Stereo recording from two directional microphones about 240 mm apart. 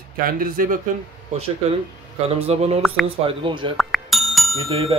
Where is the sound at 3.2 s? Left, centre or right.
Right.